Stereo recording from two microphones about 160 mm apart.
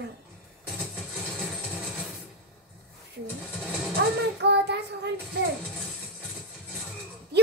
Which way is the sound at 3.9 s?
90° right.